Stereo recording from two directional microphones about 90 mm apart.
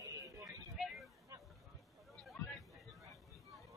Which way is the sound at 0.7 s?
Centre (ahead or behind).